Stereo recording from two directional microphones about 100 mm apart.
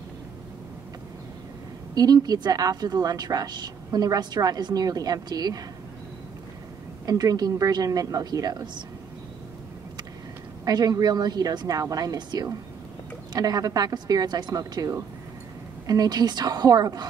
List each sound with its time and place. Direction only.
2.0 s a woman's voice: 40° right (ahead or behind)
7.1 s a woman's voice: 40° right (ahead or behind)
10.6 s a woman's voice: 40° right (ahead or behind)